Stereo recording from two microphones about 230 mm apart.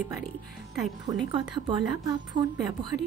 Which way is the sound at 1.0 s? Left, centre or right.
Centre.